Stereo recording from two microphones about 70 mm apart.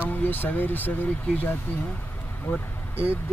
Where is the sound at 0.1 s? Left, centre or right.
Left.